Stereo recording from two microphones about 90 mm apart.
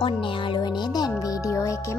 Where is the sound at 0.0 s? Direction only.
70° left (ahead or behind); by 2.0 s 35° left (ahead or behind).